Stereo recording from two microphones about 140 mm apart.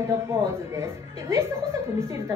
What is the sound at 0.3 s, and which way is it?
A woman's voice, 20° right (ahead or behind).